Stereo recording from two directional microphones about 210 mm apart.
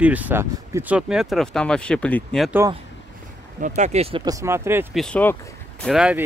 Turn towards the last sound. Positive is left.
turn(degrees=-5)  # may be behind; listen again after turning